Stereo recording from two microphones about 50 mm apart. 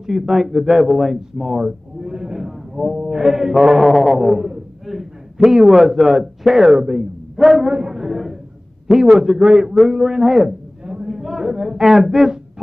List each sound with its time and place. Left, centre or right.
0.0 s speech: centre
1.4 s speech: centre
3.0 s music: centre
3.3 s speech: centre
4.8 s a sound: centre
9.0 s a man's voice: centre
10.9 s a sound: centre
11.1 s a woman's voice: centre